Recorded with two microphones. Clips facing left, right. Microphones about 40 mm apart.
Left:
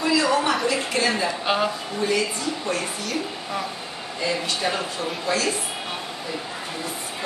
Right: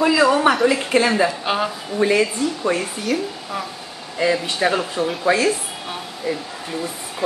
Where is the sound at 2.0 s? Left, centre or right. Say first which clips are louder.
Right 7 dB; right.